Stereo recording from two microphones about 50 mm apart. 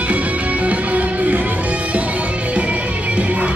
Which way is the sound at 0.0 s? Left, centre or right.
Right.